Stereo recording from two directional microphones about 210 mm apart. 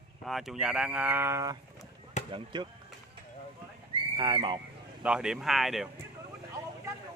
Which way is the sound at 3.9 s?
25° right (ahead or behind).